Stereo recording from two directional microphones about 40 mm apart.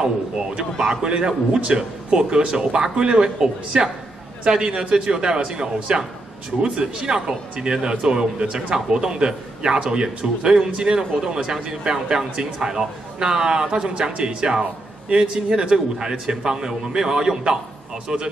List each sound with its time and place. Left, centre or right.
1.0 s speech: right